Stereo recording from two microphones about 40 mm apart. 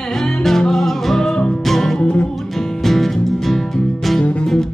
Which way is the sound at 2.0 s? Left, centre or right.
Left.